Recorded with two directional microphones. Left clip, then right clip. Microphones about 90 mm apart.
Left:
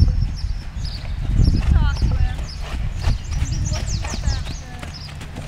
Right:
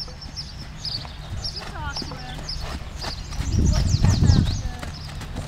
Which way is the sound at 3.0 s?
5° left (ahead or behind).